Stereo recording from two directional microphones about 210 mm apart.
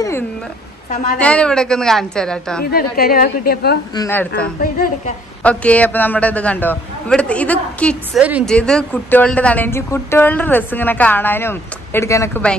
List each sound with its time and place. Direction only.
1.1 s a woman's voice: 5° left (ahead or behind)
2.6 s a woman's voice: 45° left (ahead or behind)
3.9 s speech: 15° left (ahead or behind)
4.6 s a woman's voice: 45° left (ahead or behind)
5.4 s speech: 5° left (ahead or behind)
8.2 s a woman's voice: 5° right (ahead or behind); by 12.5 s 10° left (ahead or behind)